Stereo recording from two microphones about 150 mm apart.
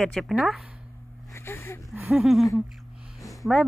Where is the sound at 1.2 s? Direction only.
15° left (ahead or behind).